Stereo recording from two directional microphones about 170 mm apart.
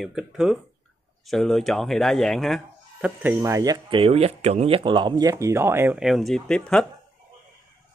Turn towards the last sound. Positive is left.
turn(degrees=5)  # may be behind; listen again after turning